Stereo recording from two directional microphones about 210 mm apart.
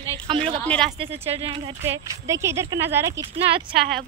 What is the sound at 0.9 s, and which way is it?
Speech, 25° right (ahead or behind).